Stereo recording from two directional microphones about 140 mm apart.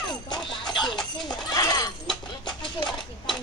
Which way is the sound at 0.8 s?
5° left (ahead or behind).